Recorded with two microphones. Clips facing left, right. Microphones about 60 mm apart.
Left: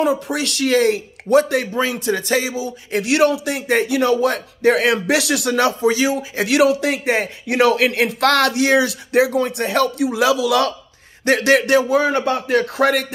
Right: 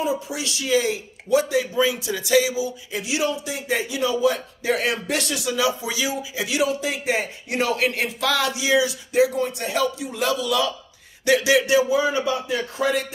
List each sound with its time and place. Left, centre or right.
0.0 s speech: left
2.9 s speech: left
5.8 s speech: left
6.3 s speech: left
11.2 s speech: left